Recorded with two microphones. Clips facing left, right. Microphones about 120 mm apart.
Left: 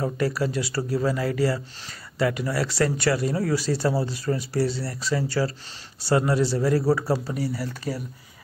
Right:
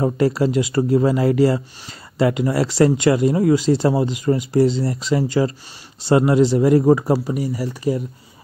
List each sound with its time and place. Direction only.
0.0 s speech: 25° right (ahead or behind)